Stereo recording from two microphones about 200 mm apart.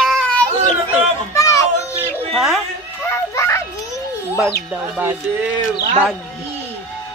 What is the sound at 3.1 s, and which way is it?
Children playing, 15° left (ahead or behind).